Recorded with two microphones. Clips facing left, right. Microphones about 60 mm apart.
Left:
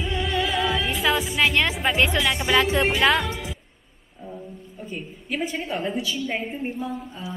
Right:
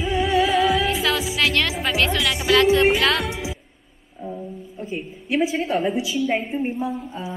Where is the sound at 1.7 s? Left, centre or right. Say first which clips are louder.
Even; centre.